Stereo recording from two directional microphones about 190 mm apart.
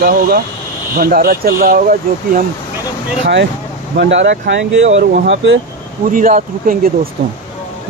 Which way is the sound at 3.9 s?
65° right (ahead or behind).